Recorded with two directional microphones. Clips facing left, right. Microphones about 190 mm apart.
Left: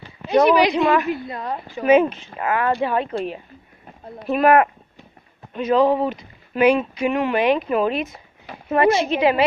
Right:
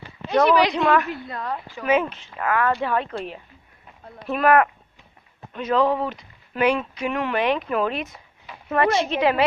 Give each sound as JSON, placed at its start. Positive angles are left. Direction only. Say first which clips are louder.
{"t": 0.3, "sound": "a woman's voice", "louder": "left 3 dB", "side_deg": 15}